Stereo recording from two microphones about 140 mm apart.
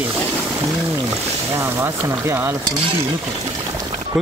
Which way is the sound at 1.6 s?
20° right (ahead or behind).